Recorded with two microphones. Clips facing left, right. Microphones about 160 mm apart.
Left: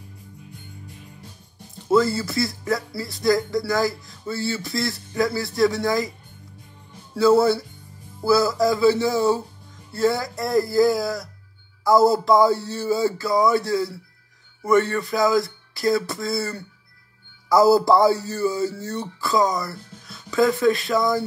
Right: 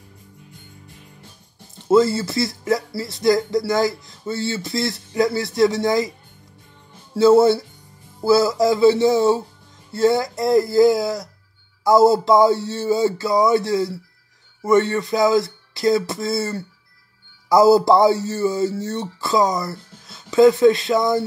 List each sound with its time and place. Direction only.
1.9 s speech: 25° right (ahead or behind)
7.2 s speech: 25° right (ahead or behind)